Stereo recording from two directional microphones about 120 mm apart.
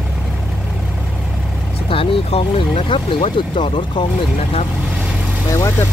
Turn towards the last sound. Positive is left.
turn(degrees=25)  # may be behind; listen again after turning